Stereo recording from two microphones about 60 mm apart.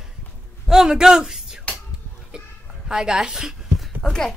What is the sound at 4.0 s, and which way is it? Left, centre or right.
Speech, centre.